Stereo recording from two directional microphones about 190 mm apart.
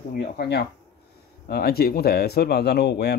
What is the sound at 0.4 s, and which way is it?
Speech, 60° left (ahead or behind).